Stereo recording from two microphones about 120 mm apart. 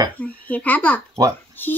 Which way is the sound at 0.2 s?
10° left (ahead or behind).